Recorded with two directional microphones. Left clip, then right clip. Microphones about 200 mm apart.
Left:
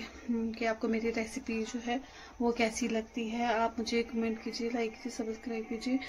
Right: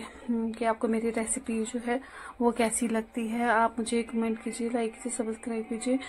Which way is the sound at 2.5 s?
15° right (ahead or behind).